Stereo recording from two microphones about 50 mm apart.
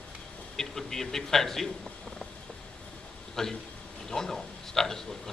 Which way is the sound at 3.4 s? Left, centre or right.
Centre.